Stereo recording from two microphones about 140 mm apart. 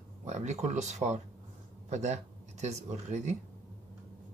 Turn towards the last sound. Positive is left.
turn(degrees=-55)  # may be behind; listen again after turning